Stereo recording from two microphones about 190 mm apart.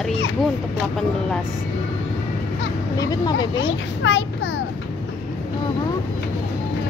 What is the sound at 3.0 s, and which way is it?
Speech, 20° left (ahead or behind).